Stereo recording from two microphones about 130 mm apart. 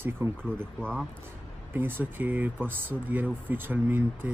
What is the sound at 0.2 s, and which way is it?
Speech, 20° right (ahead or behind).